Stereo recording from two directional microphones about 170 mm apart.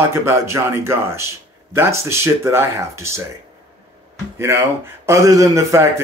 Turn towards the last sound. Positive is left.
turn(degrees=-15)  # may be behind; listen again after turning